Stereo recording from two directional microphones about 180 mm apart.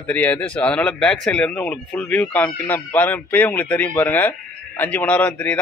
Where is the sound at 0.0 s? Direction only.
10° left (ahead or behind).